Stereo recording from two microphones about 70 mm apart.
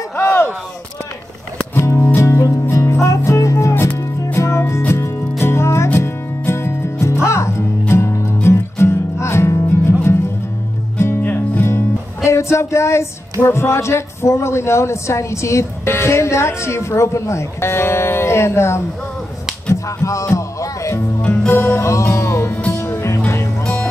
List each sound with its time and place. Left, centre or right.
1.8 s music: left
11.0 s music: left